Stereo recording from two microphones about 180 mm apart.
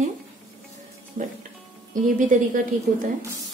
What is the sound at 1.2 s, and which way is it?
Music, 45° right (ahead or behind).